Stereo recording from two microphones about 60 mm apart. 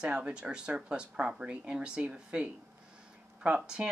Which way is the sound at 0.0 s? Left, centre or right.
Centre.